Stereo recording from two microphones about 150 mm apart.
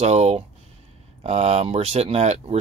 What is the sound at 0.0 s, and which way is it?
Speech, 45° right (ahead or behind).